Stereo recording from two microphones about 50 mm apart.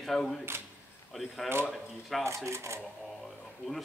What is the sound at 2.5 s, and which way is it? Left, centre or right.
Speech, right.